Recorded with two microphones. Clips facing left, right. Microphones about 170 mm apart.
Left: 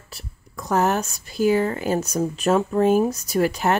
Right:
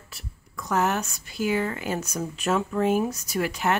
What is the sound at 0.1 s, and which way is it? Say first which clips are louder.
Speech: left 2 dB; 35° left (ahead or behind).